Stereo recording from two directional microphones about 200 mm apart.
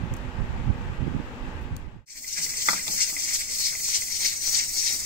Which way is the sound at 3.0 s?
50° right (ahead or behind).